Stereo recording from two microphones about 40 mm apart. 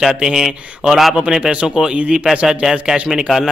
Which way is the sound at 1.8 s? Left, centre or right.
Right.